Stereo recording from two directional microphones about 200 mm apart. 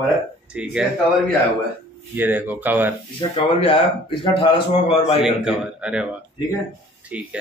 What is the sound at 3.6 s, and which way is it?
Speech, 25° left (ahead or behind).